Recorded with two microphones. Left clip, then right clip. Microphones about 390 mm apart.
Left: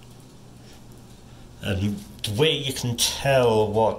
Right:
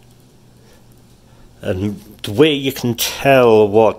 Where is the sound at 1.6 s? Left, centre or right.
Centre.